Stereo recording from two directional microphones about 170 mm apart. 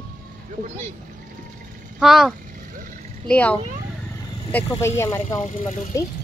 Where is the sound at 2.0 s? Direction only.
Centre (ahead or behind); by 5.3 s 15° left (ahead or behind).